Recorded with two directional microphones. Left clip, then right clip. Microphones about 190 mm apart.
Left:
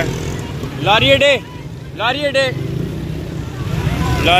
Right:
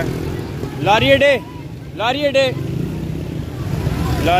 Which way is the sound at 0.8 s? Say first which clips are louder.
Left 1 dB; 25° right (ahead or behind).